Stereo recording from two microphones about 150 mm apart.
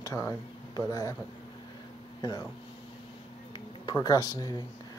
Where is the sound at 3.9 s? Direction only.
25° left (ahead or behind).